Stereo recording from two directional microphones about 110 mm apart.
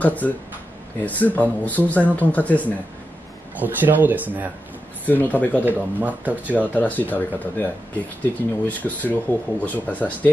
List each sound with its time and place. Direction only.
0.0 s speech: 15° left (ahead or behind)
3.5 s speech: 15° right (ahead or behind)
5.0 s speech: 15° left (ahead or behind)
5.7 s speech: 15° right (ahead or behind)
6.7 s speech: 15° left (ahead or behind)